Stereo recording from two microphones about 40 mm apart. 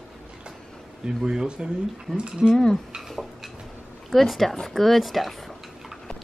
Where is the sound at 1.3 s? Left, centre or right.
Centre.